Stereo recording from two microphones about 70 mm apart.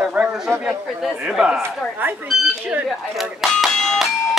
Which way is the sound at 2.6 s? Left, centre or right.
Right.